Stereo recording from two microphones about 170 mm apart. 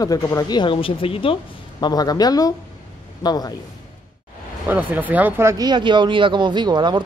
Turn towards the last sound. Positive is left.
turn(degrees=-25)  # may be behind; listen again after turning